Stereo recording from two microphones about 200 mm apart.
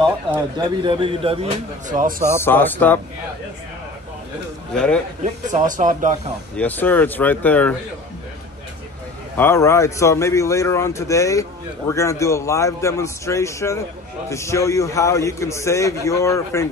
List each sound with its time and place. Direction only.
0.6 s speech: 25° right (ahead or behind); by 2.2 s 40° right (ahead or behind)
2.4 s a man's voice: 10° left (ahead or behind)
4.7 s a man's voice: 5° left (ahead or behind)
5.2 s speech: 40° right (ahead or behind)
6.5 s a man's voice: 10° left (ahead or behind)
9.4 s a man's voice: 10° left (ahead or behind)